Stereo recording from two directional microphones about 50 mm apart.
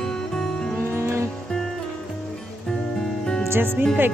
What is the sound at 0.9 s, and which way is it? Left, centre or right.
Music, right.